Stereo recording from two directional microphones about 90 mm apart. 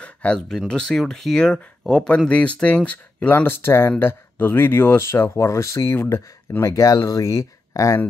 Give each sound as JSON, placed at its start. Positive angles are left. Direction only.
{"t": 0.0, "sound": "speech", "side_deg": 10}